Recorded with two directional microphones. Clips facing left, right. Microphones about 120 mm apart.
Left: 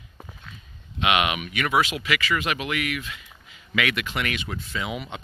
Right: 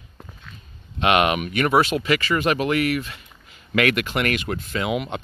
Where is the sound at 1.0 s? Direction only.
45° right (ahead or behind).